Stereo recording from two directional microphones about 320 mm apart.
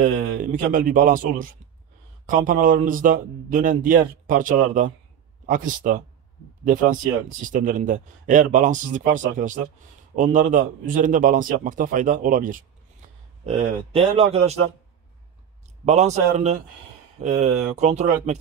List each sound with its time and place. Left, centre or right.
0.4 s a man's voice: right
15.8 s a man's voice: right